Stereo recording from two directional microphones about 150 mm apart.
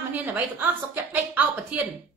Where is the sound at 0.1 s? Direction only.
10° right (ahead or behind).